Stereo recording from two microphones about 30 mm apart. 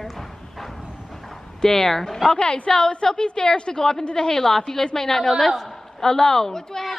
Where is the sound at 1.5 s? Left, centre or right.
Centre.